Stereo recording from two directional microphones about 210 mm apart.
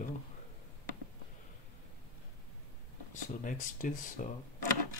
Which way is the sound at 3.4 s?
40° left (ahead or behind).